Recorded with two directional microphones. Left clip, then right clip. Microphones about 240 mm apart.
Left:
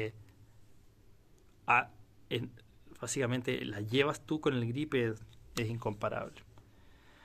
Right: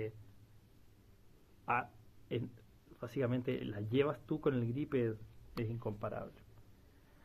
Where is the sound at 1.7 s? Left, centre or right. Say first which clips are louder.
Left 8 dB; centre.